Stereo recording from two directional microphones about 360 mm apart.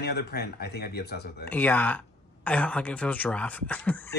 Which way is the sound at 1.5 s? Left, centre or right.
Centre.